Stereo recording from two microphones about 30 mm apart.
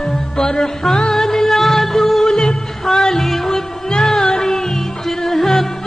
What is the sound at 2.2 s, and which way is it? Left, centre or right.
Music, centre.